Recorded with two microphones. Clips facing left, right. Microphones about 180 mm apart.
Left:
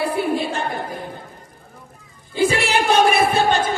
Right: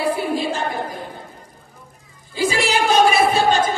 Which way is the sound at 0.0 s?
60° left (ahead or behind).